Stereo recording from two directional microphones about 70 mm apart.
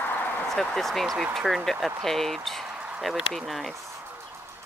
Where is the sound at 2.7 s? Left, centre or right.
Centre.